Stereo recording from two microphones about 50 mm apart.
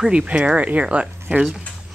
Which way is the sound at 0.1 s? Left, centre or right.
Right.